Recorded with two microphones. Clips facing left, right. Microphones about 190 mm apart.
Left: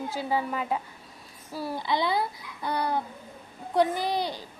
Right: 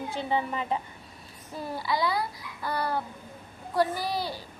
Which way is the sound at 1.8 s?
25° left (ahead or behind).